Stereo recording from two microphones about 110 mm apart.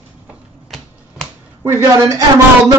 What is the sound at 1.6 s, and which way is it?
Speech, 25° right (ahead or behind).